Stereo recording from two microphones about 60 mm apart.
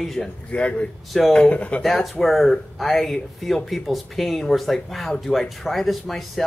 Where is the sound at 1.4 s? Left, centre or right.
Centre.